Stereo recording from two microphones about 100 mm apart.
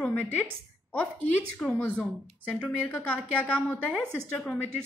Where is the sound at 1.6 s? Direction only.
15° left (ahead or behind).